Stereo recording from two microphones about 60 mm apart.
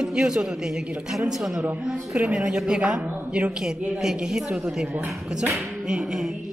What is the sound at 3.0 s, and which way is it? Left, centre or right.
Speech, right.